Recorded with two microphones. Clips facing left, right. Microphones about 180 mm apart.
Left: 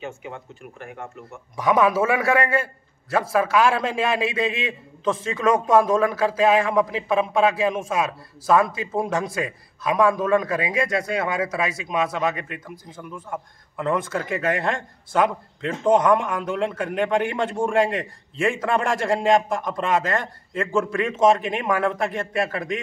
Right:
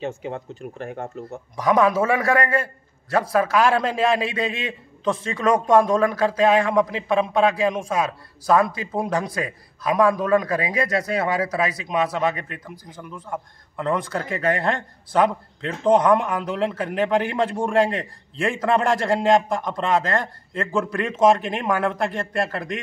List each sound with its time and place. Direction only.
0.0 s speech: 35° right (ahead or behind)
1.6 s a man's voice: 5° left (ahead or behind)